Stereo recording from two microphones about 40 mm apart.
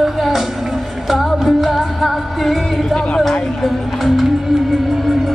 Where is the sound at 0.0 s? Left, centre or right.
Centre.